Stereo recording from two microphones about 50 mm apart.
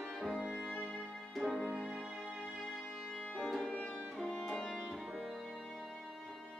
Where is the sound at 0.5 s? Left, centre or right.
Centre.